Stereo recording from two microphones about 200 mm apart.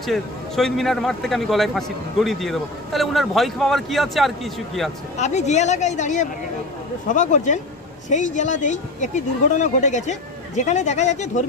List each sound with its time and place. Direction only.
0.0 s a man's voice: centre (ahead or behind)
5.1 s speech: 35° left (ahead or behind)